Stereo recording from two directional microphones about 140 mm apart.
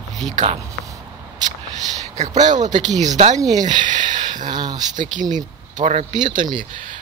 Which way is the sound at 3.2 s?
45° right (ahead or behind).